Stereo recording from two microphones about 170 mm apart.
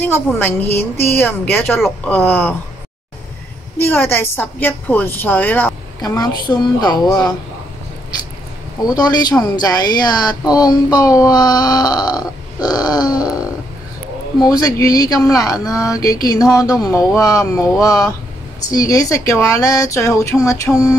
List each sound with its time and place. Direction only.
0.0 s a woman's voice: 10° left (ahead or behind)
3.9 s a woman's voice: 10° left (ahead or behind)
6.0 s speech: 20° left (ahead or behind)
8.8 s speech: 25° left (ahead or behind)
14.4 s speech: 20° left (ahead or behind)